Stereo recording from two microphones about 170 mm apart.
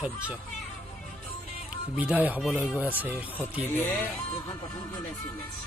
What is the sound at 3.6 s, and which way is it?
Speech, 15° left (ahead or behind).